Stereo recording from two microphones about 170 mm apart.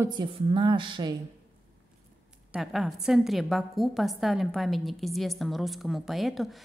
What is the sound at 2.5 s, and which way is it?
A woman's voice, centre (ahead or behind).